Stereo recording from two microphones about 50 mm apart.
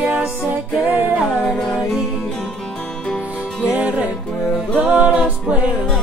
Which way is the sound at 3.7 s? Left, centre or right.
Right.